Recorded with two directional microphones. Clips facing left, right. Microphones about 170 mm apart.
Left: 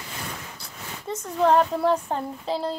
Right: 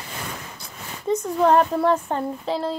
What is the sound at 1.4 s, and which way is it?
Speech, 5° right (ahead or behind).